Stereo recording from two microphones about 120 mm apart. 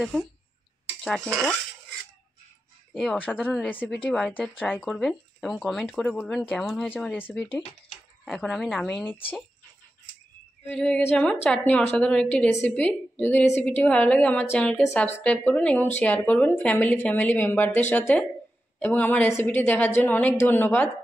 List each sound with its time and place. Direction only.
1.0 s speech: 5° left (ahead or behind)
3.0 s speech: 10° left (ahead or behind)
7.0 s speech: 15° left (ahead or behind)
8.3 s speech: 5° left (ahead or behind)
10.7 s speech: 5° left (ahead or behind)